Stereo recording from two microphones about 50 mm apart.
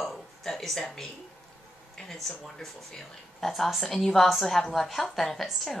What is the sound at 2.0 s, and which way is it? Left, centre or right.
Speech, centre.